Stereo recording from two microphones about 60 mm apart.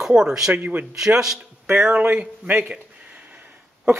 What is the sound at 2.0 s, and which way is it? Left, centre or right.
Speech, right.